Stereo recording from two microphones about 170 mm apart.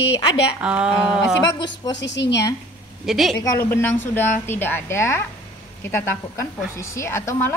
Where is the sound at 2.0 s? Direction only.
90° left.